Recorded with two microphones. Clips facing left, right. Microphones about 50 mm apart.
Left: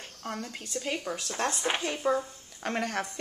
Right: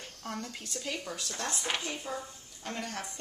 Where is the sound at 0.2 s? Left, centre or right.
Centre.